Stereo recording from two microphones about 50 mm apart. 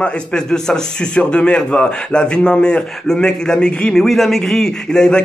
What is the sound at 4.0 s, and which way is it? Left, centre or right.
A man's voice, centre.